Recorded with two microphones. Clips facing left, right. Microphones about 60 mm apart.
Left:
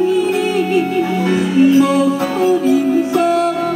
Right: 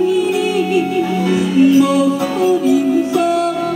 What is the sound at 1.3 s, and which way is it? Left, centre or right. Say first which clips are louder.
Music: even; left.